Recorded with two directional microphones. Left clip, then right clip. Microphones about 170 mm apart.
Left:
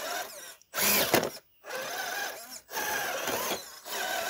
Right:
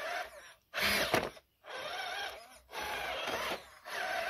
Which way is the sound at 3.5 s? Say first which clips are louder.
Left 5 dB; 5° right (ahead or behind).